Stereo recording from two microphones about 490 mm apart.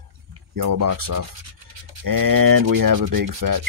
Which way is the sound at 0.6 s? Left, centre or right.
Right.